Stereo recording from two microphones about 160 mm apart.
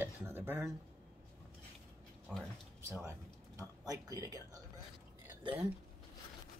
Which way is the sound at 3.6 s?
20° right (ahead or behind).